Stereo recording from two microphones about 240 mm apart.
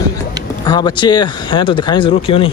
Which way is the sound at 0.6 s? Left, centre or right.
Centre.